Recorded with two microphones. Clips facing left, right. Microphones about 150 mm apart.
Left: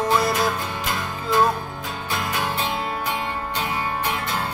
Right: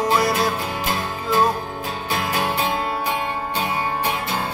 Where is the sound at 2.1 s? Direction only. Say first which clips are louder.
Right 3 dB; 25° right (ahead or behind).